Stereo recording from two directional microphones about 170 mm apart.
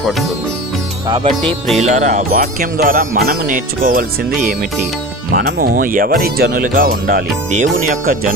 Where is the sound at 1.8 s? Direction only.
50° right (ahead or behind).